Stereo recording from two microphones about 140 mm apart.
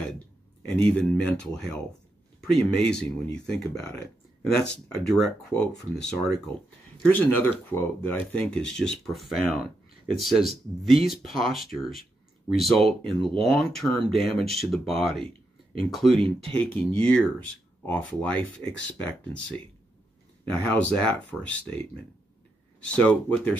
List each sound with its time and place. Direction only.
0.0 s speech: 10° left (ahead or behind)
16.2 s speech: 40° right (ahead or behind)
16.5 s speech: 10° left (ahead or behind)
20.5 s speech: 10° left (ahead or behind)
22.8 s speech: 10° left (ahead or behind)